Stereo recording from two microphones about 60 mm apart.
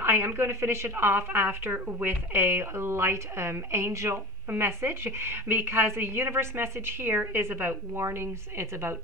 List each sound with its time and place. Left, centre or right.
0.0 s a woman's voice: right
2.3 s a woman's voice: right